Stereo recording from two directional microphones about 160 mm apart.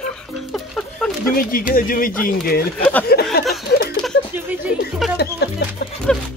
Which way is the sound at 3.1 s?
80° left.